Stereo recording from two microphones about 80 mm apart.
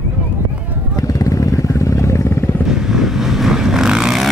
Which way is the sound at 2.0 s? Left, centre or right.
Left.